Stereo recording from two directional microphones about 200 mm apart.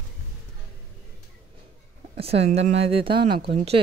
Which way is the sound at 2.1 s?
30° right (ahead or behind).